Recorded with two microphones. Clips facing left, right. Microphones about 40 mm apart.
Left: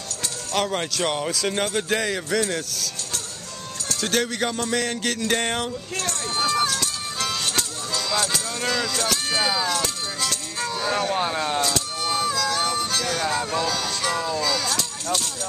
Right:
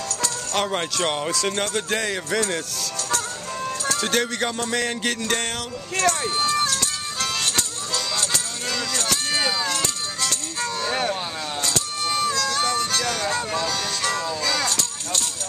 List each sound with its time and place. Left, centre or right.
0.6 s speech: centre
1.3 s music: centre
4.0 s music: centre
5.3 s a sound: centre
6.3 s music: centre
11.1 s speech: centre
11.6 s harmonica: centre